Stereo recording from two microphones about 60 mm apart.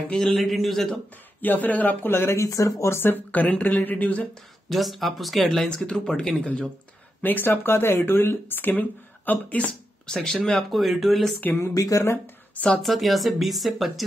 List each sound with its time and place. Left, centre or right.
0.1 s speech: centre
0.4 s speech: centre
1.4 s speech: left
2.3 s speech: left
3.0 s a woman's voice: left
4.6 s speech: centre
5.8 s speech: centre
7.2 s speech: left
10.0 s speech: centre
10.7 s speech: centre
11.7 s speech: left
12.5 s a woman's voice: centre
12.8 s speech: centre